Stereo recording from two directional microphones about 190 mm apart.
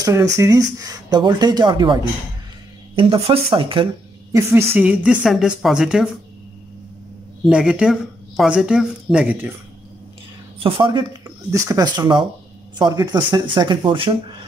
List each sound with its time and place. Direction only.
0.0 s speech: 15° right (ahead or behind)
3.0 s speech: 30° right (ahead or behind)
4.4 s speech: 15° right (ahead or behind)
7.4 s speech: 5° right (ahead or behind)
10.6 s speech: 25° right (ahead or behind)